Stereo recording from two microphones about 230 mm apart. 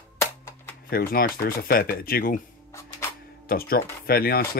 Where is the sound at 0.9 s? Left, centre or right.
Left.